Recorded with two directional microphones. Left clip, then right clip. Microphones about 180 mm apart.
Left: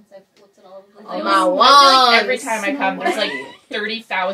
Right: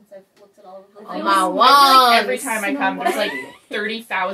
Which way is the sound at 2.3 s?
15° right (ahead or behind).